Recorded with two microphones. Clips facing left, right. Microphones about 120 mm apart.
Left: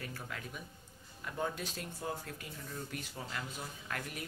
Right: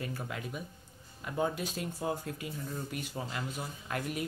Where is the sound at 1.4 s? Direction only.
10° right (ahead or behind).